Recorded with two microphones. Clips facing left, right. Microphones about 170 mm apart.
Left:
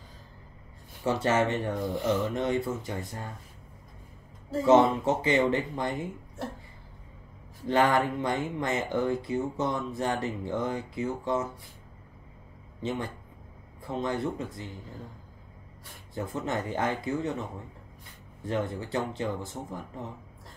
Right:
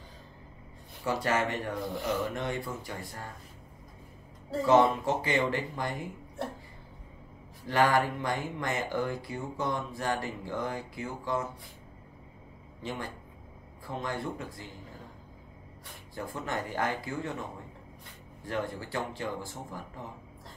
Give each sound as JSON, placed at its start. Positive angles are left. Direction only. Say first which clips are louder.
{"t": 1.0, "sound": "speech", "louder": "left 4 dB", "side_deg": 25}
{"t": 4.6, "sound": "speech", "louder": "left 3 dB", "side_deg": 25}
{"t": 7.6, "sound": "speech", "louder": "left 2 dB", "side_deg": 25}
{"t": 13.8, "sound": "speech", "louder": "left 5 dB", "side_deg": 20}
{"t": 16.2, "sound": "speech", "louder": "left 4 dB", "side_deg": 20}
{"t": 18.4, "sound": "speech", "louder": "left 3 dB", "side_deg": 20}